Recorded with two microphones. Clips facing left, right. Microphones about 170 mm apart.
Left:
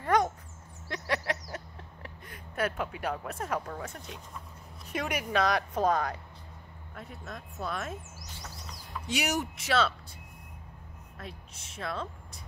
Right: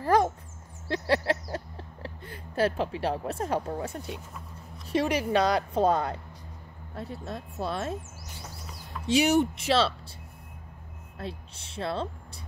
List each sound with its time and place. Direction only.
0.0 s dog: 30° right (ahead or behind)
0.8 s a sound: 30° right (ahead or behind)
4.8 s a woman's voice: 30° right (ahead or behind)
8.4 s a sound: 5° right (ahead or behind)
9.0 s a woman's voice: 30° right (ahead or behind)
11.1 s a woman's voice: 30° right (ahead or behind)